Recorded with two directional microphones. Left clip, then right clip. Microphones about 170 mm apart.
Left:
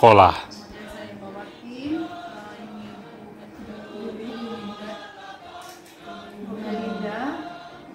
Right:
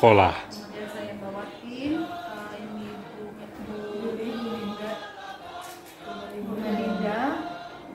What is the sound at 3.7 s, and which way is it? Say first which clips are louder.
Choir: right 4 dB; centre (ahead or behind).